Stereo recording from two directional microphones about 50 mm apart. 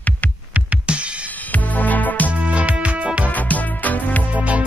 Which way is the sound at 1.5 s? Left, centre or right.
Left.